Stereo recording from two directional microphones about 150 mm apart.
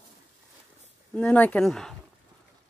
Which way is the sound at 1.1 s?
5° left (ahead or behind).